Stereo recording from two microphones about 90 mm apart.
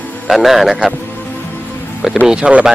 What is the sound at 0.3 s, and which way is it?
Speech, centre (ahead or behind).